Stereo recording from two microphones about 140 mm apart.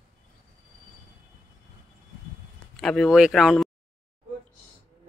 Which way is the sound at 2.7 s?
Centre (ahead or behind).